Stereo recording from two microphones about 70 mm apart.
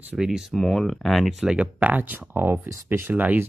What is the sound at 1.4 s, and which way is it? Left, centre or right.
Speech, centre.